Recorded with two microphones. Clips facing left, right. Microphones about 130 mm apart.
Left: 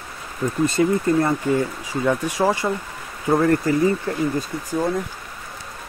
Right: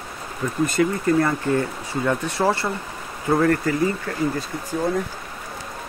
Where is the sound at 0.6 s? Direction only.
25° left (ahead or behind).